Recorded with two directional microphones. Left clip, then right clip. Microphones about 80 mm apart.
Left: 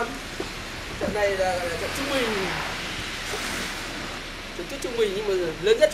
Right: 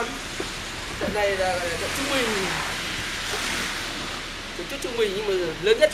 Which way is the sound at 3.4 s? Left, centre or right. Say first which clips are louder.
Right 3 dB; centre.